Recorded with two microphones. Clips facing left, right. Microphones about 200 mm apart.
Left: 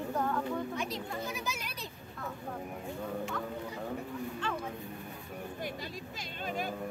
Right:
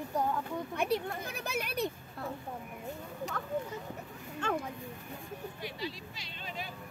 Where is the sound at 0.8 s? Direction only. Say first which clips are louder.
Right 4 dB; 60° right (ahead or behind).